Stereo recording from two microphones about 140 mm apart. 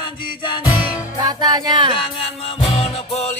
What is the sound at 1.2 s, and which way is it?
Music, 30° right (ahead or behind).